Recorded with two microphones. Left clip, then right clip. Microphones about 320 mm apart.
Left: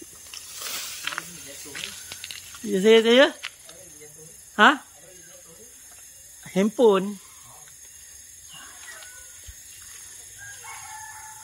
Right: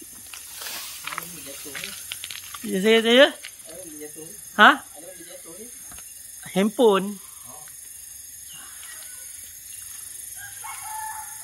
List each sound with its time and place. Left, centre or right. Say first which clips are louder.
0.7 s a sound: left 2 dB; centre
2.2 s crumpling: left 3 dB; centre
4.6 s speech: right 3 dB; centre
6.4 s speech: even; centre